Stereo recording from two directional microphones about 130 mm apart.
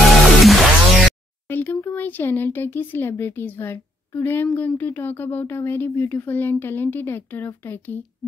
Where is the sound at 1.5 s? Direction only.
15° left (ahead or behind).